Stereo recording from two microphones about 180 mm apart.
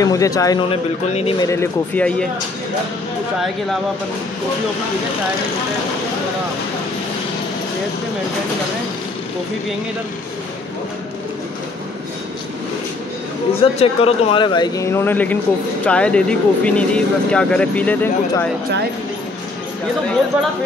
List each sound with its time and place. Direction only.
0.0 s speech: 20° left (ahead or behind)
0.7 s speech: 30° left (ahead or behind)
1.5 s speech: 10° left (ahead or behind)
13.6 s speech: 35° left (ahead or behind); by 18.1 s 10° left (ahead or behind)